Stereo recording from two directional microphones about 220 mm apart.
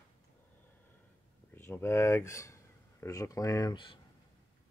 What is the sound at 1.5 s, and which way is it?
Speech, 10° left (ahead or behind).